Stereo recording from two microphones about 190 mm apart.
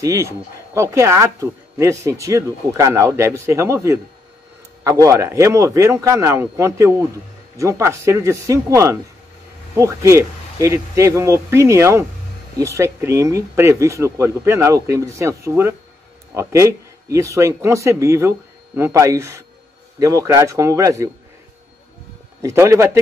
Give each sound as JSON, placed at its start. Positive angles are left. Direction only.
{"t": 0.0, "sound": "speech", "side_deg": -15}
{"t": 22.4, "sound": "speech", "side_deg": -15}